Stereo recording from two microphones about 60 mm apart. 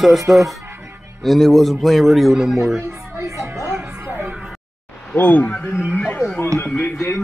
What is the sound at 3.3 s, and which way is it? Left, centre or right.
Music, right.